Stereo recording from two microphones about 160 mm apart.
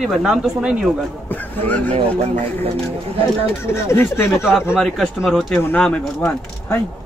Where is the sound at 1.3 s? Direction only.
10° left (ahead or behind).